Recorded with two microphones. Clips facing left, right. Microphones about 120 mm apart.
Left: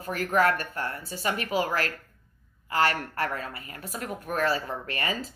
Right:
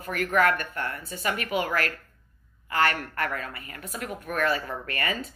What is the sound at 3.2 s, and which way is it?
Speech, 30° left (ahead or behind).